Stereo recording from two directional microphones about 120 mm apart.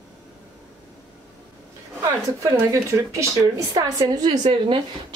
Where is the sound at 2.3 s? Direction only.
25° right (ahead or behind).